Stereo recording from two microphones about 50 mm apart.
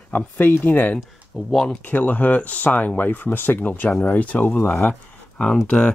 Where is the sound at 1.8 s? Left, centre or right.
Left.